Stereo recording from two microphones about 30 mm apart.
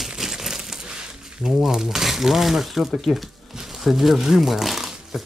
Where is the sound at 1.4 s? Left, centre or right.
Centre.